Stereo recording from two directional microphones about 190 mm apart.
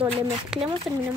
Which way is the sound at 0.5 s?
5° right (ahead or behind).